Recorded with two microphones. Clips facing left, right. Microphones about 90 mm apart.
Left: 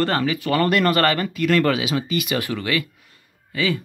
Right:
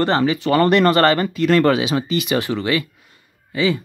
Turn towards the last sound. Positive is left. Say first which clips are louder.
# right 4 dB
turn(degrees=-25)  # may be behind; listen again after turning